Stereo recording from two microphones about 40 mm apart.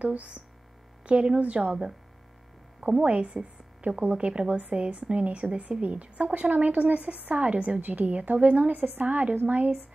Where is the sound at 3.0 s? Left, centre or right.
Right.